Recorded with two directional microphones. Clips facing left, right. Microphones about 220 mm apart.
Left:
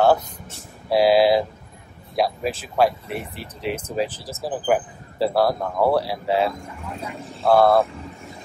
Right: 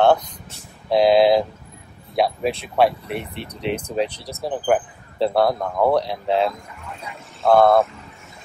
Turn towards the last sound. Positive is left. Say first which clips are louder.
# right 1 dB
turn(degrees=5)  # may be behind; listen again after turning